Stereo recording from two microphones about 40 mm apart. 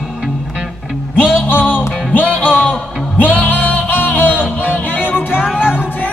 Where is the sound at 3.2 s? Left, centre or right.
Left.